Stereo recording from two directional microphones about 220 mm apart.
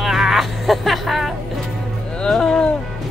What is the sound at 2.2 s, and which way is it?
Speech, 5° left (ahead or behind).